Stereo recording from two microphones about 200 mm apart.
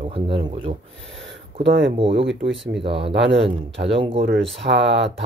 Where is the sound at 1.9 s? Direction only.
25° right (ahead or behind).